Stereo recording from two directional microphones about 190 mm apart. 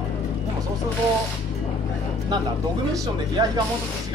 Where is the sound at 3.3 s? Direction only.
20° right (ahead or behind).